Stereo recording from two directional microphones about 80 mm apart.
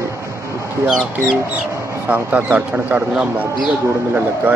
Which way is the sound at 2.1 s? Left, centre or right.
Right.